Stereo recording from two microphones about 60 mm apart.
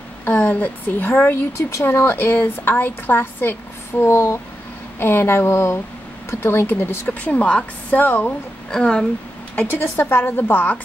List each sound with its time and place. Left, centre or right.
0.2 s a woman's voice: left
1.3 s speech: left
1.9 s a woman's voice: left
8.6 s speech: centre
9.6 s a woman's voice: left